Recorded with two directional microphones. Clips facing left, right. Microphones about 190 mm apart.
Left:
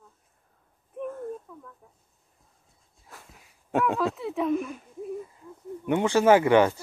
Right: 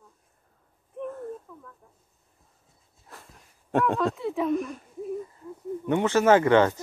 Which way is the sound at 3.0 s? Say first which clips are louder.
Right 1 dB; centre (ahead or behind).